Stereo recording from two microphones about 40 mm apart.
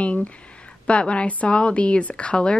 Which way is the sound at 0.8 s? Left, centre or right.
Left.